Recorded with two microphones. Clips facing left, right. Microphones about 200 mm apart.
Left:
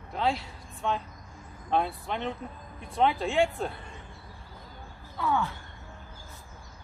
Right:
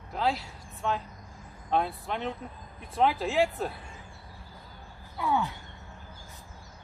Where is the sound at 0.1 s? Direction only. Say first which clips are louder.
Even; centre (ahead or behind).